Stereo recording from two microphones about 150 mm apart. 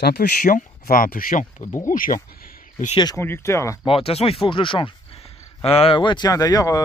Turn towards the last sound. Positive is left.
turn(degrees=25)  # may be behind; listen again after turning